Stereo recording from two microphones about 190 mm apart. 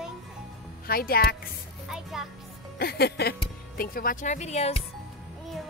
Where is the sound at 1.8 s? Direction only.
5° right (ahead or behind).